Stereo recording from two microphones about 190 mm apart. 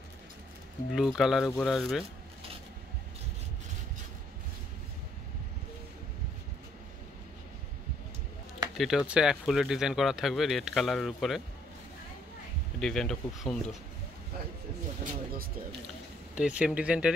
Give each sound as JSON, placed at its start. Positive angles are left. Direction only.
{"t": 0.9, "sound": "speech", "side_deg": 0}
{"t": 8.7, "sound": "speech", "side_deg": 0}
{"t": 12.8, "sound": "speech", "side_deg": 0}
{"t": 15.0, "sound": "speech", "side_deg": -50}
{"t": 16.3, "sound": "speech", "side_deg": -5}